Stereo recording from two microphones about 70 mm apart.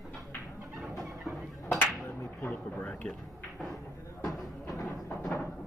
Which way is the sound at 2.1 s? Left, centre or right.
Left.